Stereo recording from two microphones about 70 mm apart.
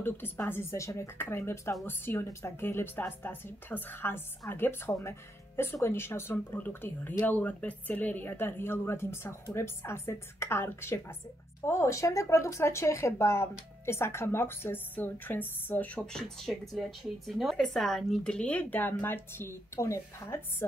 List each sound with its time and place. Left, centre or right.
0.5 s speech: left
16.0 s a woman's voice: centre; by 20.6 s left